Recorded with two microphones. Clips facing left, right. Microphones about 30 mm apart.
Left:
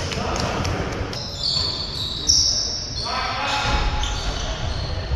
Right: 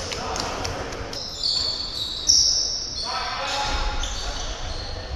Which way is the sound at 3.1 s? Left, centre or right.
Centre.